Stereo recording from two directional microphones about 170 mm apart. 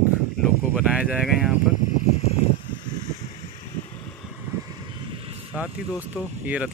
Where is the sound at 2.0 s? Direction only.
40° left (ahead or behind).